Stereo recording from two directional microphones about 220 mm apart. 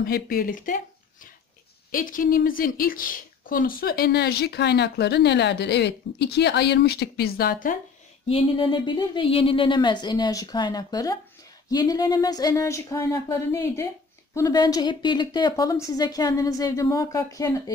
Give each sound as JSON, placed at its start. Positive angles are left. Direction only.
{"t": 0.0, "sound": "a woman's voice", "side_deg": 45}
{"t": 8.3, "sound": "a woman's voice", "side_deg": 25}